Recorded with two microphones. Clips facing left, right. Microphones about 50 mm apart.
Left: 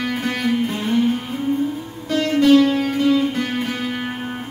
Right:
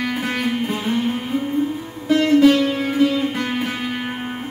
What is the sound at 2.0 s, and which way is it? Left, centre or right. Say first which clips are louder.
Music: right 2 dB; centre.